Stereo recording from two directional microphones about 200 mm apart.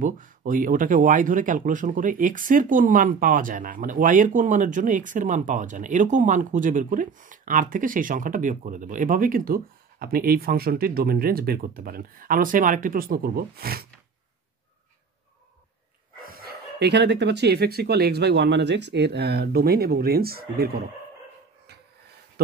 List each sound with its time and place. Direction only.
0.0 s speech: 40° right (ahead or behind)
16.3 s speech: 50° right (ahead or behind)